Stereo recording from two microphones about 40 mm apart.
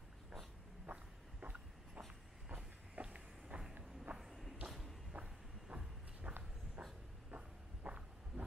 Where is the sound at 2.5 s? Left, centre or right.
Right.